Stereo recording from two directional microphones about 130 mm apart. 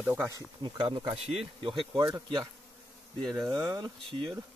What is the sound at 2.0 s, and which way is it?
Speech, 35° right (ahead or behind).